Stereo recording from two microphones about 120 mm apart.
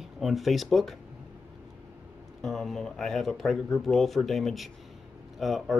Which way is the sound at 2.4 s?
Centre (ahead or behind).